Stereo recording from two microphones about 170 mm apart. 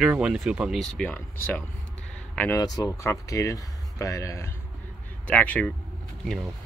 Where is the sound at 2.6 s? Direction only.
20° left (ahead or behind).